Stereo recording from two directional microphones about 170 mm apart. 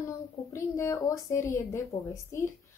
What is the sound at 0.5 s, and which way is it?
A woman's voice, 15° left (ahead or behind).